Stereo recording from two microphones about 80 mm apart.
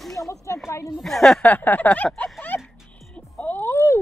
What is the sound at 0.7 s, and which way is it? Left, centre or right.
Speech, left.